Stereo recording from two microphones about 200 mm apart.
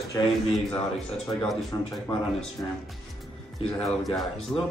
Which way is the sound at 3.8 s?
Centre (ahead or behind).